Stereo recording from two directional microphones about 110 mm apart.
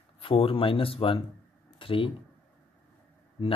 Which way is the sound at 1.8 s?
55° left (ahead or behind).